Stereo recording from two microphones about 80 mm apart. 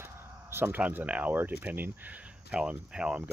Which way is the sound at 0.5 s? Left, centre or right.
Right.